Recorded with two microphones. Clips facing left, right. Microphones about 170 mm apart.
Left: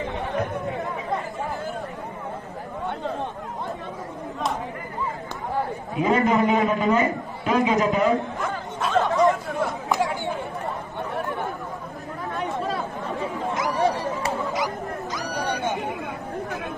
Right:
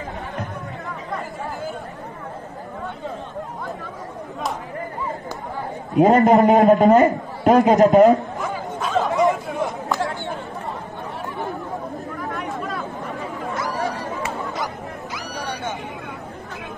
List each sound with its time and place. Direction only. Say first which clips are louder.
5.9 s a man's voice: right 7 dB; 45° right (ahead or behind)
8.4 s chatter: right 2 dB; centre (ahead or behind)
9.1 s chatter: right 1 dB; 20° right (ahead or behind)
9.8 s chatter: even; 15° left (ahead or behind)
12.4 s chatter: left 5 dB; 30° left (ahead or behind)